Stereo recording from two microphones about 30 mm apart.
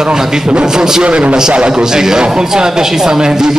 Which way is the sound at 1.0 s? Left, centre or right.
Right.